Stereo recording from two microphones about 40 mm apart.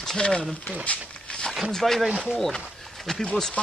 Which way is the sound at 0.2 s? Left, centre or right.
Left.